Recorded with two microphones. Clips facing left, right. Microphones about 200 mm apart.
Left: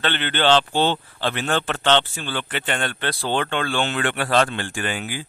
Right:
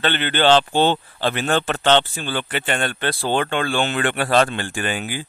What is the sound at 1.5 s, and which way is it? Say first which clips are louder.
Speech: right 2 dB; 40° right (ahead or behind).